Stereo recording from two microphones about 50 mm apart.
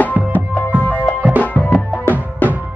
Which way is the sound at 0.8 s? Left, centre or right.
Left.